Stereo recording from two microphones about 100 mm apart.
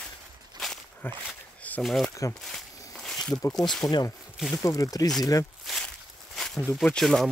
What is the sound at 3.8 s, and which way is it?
Speech, 40° left (ahead or behind).